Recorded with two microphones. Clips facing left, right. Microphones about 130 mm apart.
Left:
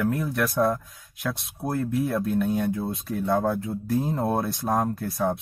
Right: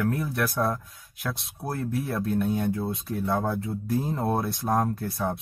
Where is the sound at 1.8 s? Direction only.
Centre (ahead or behind).